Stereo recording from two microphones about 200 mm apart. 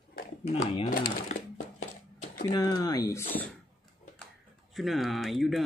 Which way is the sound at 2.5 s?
20° left (ahead or behind).